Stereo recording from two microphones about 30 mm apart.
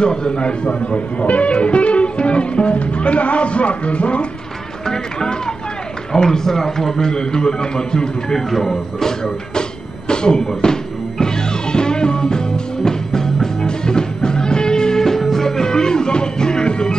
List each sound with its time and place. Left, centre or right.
0.0 s a man's voice: left
1.2 s music: left
4.8 s a man's voice: left
7.1 s a man's voice: left
8.4 s a man's voice: centre
9.6 s a sound: left
10.6 s music: left